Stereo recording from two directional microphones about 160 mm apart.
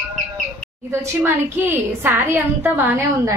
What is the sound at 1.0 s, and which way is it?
A woman's voice, 15° right (ahead or behind).